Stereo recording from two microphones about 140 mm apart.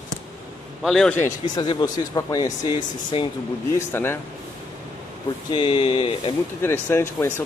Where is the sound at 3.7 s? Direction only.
15° left (ahead or behind).